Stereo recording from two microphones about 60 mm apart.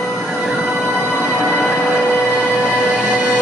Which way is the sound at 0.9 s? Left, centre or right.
Centre.